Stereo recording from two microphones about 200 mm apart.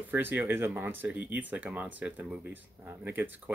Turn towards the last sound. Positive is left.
turn(degrees=-10)  # may be behind; listen again after turning